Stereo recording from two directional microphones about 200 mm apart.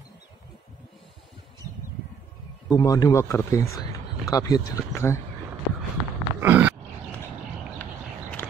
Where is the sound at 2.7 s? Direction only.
15° left (ahead or behind).